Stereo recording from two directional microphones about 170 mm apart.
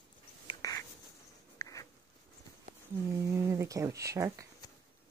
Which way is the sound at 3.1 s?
15° right (ahead or behind).